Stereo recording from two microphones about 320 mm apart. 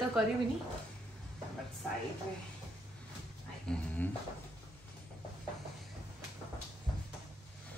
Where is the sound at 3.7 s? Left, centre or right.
Centre.